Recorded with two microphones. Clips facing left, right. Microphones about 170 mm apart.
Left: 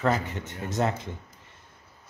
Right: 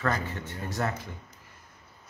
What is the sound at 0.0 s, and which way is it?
Speech, 20° left (ahead or behind).